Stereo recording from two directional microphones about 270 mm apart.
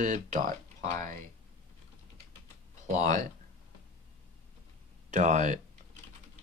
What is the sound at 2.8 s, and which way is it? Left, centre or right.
Speech, right.